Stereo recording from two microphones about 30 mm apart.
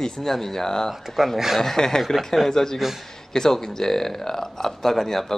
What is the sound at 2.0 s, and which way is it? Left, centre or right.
Speech, centre.